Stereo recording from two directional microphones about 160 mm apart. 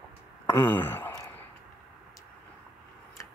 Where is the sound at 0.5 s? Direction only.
15° left (ahead or behind).